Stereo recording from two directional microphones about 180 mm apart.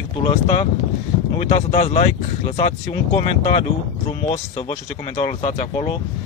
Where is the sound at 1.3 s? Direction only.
35° left (ahead or behind).